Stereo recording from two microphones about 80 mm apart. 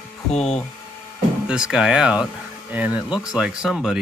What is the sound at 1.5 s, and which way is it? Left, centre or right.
Speech, centre.